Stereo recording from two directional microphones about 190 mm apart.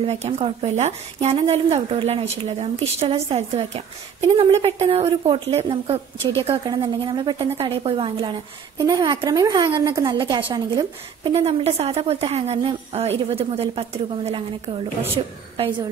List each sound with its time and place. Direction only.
0.0 s a woman's voice: 35° right (ahead or behind)
11.3 s a woman's voice: 30° right (ahead or behind)